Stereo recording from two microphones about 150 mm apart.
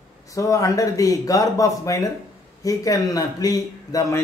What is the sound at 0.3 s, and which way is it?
Speech, 20° left (ahead or behind).